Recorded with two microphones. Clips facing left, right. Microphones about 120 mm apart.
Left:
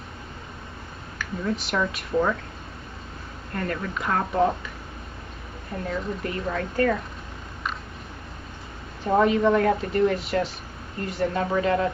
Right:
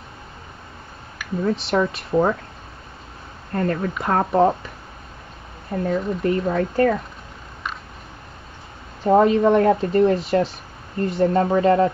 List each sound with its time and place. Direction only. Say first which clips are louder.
1.4 s speech: right 6 dB; 30° right (ahead or behind)
3.5 s speech: right 6 dB; 35° right (ahead or behind)
5.7 s speech: right 7 dB; 35° right (ahead or behind)
9.0 s speech: right 5 dB; 35° right (ahead or behind)